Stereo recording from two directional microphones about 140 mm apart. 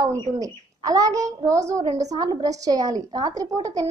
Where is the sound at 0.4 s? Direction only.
25° right (ahead or behind).